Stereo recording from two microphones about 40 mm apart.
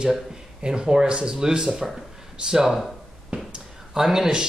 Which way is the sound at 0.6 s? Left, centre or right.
Right.